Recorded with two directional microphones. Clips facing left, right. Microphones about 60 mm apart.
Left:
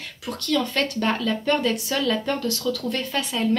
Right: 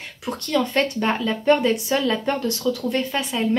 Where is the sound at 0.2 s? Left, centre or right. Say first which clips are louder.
Right 2 dB; right.